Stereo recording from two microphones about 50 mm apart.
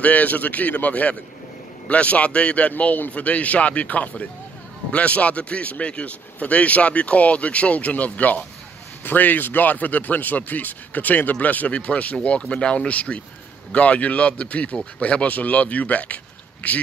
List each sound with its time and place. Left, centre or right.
0.0 s speech: left
2.7 s speech: left